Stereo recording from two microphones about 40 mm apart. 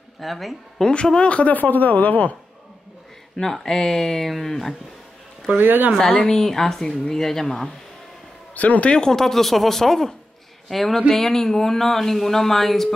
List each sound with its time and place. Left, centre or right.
0.2 s speech: centre
0.8 s speech: centre
1.2 s a man's voice: left
1.5 s speech: left
3.3 s speech: centre
5.6 s speech: right
5.9 s speech: centre
8.5 s a man's voice: left
8.9 s speech: centre